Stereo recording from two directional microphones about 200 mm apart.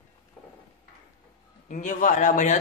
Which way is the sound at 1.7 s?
40° left (ahead or behind).